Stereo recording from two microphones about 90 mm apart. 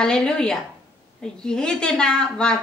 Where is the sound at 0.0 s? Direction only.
10° left (ahead or behind).